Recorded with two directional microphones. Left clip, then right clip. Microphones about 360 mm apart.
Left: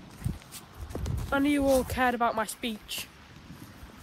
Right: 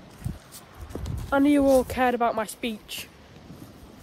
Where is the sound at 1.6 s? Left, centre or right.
Centre.